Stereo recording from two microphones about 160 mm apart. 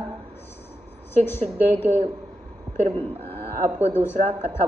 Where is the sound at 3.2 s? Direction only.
10° left (ahead or behind).